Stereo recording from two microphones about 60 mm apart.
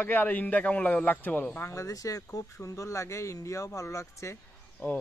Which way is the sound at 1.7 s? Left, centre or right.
Left.